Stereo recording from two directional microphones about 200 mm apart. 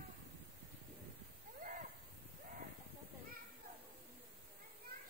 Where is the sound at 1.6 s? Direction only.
40° right (ahead or behind).